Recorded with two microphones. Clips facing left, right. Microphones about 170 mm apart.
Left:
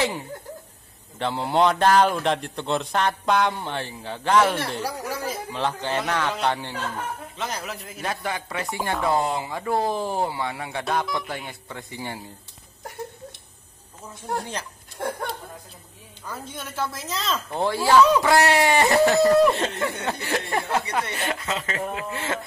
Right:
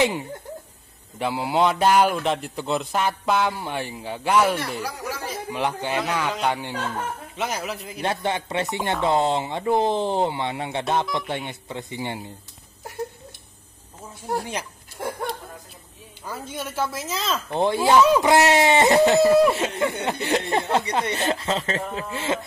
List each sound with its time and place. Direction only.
1.2 s a man's voice: 5° right (ahead or behind)
8.0 s speech: 25° right (ahead or behind)
14.2 s speech: 5° right (ahead or behind)
16.3 s a man's voice: 5° right (ahead or behind)
17.5 s speech: 20° right (ahead or behind)
19.2 s speech: 10° right (ahead or behind)
19.8 s speech: 20° right (ahead or behind)